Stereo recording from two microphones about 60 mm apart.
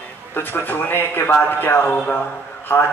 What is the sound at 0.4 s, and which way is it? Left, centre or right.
A man's voice, left.